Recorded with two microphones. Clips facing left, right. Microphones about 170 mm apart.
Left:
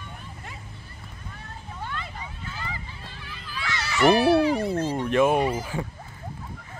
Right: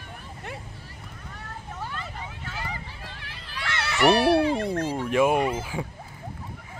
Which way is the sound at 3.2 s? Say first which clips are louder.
Left 3 dB; 70° right (ahead or behind).